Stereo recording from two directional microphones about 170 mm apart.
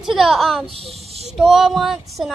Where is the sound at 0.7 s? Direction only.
35° right (ahead or behind).